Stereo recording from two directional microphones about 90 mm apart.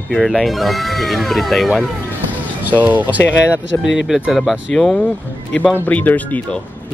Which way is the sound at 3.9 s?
Centre (ahead or behind).